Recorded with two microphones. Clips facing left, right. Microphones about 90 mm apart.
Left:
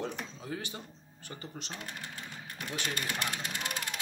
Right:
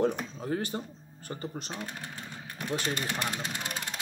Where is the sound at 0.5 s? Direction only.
45° right (ahead or behind).